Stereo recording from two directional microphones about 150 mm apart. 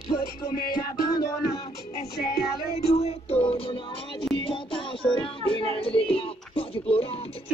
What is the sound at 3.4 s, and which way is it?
Music, 35° left (ahead or behind).